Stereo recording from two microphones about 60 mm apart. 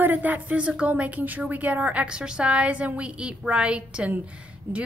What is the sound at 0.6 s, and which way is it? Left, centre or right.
A woman's voice, centre.